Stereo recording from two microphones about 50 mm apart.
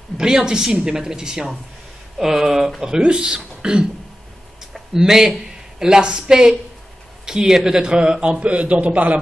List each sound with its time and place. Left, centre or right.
0.2 s a man's voice: centre; by 9.2 s right